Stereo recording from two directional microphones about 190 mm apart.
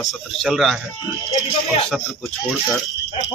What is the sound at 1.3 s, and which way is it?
Speech, 30° left (ahead or behind).